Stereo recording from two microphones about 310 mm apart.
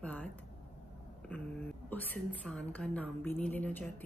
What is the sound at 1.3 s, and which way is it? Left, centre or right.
Speech, centre.